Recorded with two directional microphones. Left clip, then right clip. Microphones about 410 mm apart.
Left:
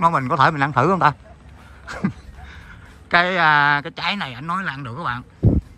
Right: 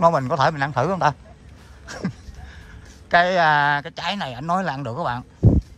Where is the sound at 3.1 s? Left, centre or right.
Centre.